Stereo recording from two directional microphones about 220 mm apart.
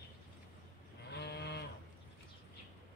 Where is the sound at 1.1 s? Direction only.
50° left (ahead or behind).